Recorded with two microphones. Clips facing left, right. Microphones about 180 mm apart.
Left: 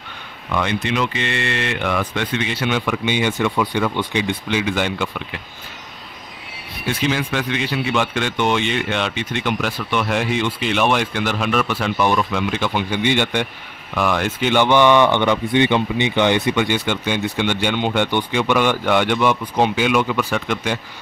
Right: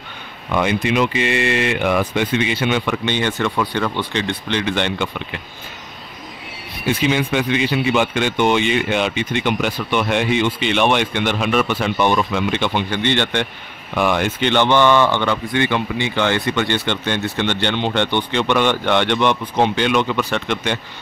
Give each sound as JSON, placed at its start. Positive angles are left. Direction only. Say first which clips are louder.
{"t": 0.5, "sound": "speech", "louder": "right 3 dB", "side_deg": -10}
{"t": 6.9, "sound": "speech", "louder": "right 3 dB", "side_deg": 0}